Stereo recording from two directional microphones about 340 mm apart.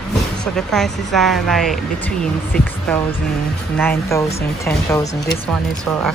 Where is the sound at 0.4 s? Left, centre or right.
Centre.